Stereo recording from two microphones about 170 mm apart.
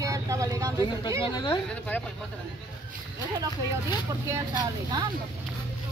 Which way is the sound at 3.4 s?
15° right (ahead or behind).